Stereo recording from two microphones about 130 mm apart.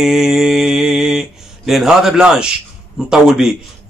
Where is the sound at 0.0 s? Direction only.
5° right (ahead or behind).